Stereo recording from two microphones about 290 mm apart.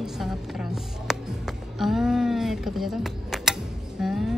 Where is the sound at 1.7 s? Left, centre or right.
Centre.